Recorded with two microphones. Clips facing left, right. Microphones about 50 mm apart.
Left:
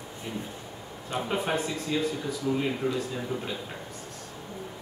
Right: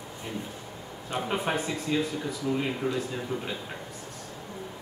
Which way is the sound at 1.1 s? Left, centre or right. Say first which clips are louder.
Even; centre.